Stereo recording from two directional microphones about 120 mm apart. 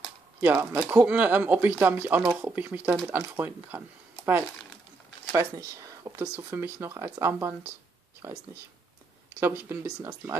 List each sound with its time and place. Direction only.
0.4 s speech: 15° right (ahead or behind)
5.3 s speech: 25° right (ahead or behind)